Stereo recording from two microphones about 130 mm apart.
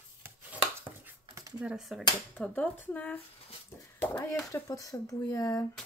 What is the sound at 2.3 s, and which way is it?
Speech, 10° left (ahead or behind).